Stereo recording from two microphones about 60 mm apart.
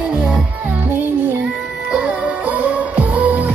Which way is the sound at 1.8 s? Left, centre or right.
Centre.